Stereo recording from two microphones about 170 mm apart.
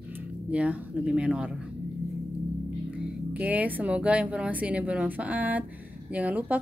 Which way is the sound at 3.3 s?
10° right (ahead or behind).